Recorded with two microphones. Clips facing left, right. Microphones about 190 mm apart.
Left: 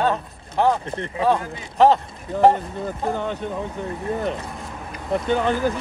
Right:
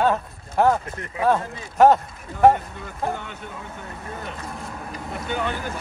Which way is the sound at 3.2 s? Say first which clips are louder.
Left 11 dB; 35° left (ahead or behind).